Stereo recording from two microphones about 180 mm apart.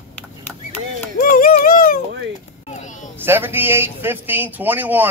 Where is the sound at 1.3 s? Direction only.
50° left (ahead or behind).